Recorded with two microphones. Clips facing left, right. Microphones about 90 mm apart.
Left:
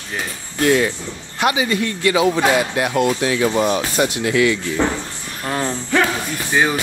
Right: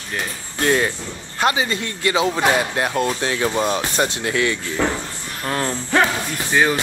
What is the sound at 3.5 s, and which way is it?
Speech, 15° left (ahead or behind).